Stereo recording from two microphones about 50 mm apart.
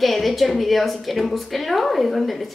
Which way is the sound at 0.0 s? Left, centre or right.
Centre.